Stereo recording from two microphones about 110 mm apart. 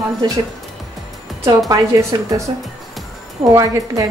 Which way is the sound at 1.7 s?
30° right (ahead or behind).